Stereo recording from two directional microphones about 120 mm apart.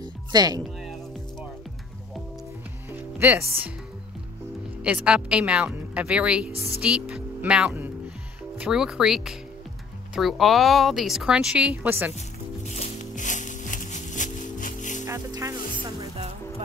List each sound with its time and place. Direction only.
0.3 s speech: 35° right (ahead or behind)
0.7 s music: centre (ahead or behind)
2.9 s speech: 15° right (ahead or behind)
4.8 s a woman's voice: 10° right (ahead or behind)
12.6 s music: 75° left (ahead or behind); by 15.0 s 90° left
15.0 s music: 25° right (ahead or behind)